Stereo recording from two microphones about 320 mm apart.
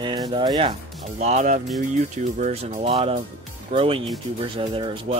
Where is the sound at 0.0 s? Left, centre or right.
Centre.